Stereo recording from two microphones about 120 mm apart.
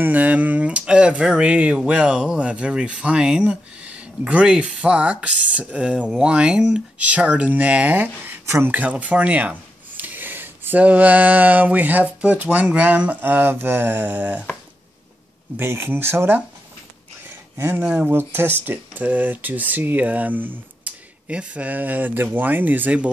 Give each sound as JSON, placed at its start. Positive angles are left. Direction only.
{"t": 0.0, "sound": "speech", "side_deg": -15}
{"t": 15.5, "sound": "speech", "side_deg": -20}
{"t": 17.6, "sound": "speech", "side_deg": -15}
{"t": 17.8, "sound": "speech", "side_deg": -5}
{"t": 18.1, "sound": "speech", "side_deg": -20}